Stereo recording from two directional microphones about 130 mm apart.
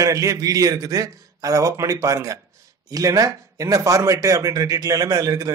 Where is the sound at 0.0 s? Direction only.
25° right (ahead or behind).